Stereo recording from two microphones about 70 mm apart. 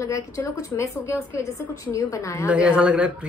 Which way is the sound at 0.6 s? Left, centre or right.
Left.